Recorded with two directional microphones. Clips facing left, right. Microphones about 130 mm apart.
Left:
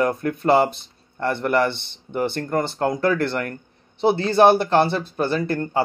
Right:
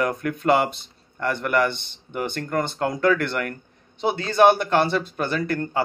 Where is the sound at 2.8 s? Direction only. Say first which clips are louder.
Even; 30° left (ahead or behind).